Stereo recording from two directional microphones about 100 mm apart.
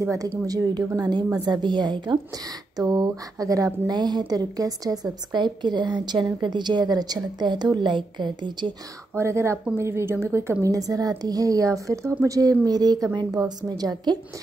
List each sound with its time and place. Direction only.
0.0 s a woman's voice: 30° right (ahead or behind); by 8.7 s 50° right (ahead or behind)
9.1 s a woman's voice: 25° right (ahead or behind)